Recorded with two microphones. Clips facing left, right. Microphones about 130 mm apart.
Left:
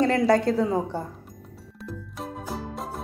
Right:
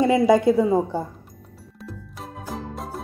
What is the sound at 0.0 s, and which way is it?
Speech, 10° right (ahead or behind).